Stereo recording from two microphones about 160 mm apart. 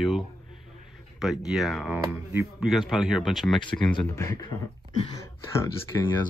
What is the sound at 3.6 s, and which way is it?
Speech, 30° left (ahead or behind).